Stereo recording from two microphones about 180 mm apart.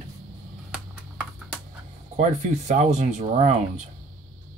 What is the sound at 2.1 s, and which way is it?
Speech, 40° right (ahead or behind).